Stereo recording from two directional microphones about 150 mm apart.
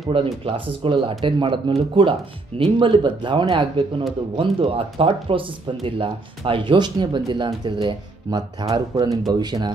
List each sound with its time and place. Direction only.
0.1 s speech: 35° right (ahead or behind)